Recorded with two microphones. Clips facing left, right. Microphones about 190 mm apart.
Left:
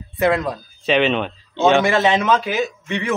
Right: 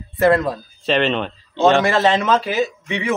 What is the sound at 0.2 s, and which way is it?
A man's voice, centre (ahead or behind).